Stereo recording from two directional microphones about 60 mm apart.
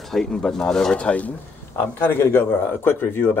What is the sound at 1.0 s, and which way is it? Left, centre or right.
Speech, left.